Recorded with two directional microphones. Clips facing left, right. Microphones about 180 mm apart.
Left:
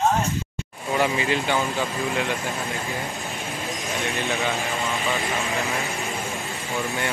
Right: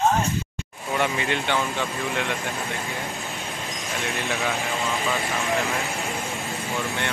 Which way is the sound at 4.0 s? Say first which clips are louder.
Left 1 dB; centre (ahead or behind).